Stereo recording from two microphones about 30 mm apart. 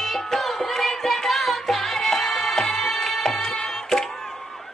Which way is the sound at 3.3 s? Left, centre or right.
Left.